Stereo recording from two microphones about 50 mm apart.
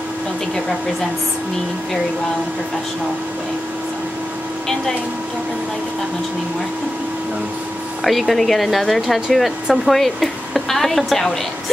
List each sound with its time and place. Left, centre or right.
8.0 s speech: centre